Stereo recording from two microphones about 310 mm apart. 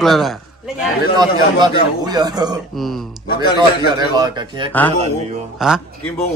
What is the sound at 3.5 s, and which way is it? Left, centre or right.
A man's voice, centre.